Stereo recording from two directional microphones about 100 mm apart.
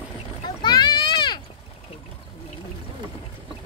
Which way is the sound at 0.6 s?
45° left (ahead or behind).